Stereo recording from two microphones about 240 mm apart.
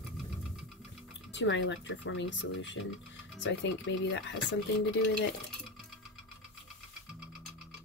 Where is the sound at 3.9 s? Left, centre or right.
Left.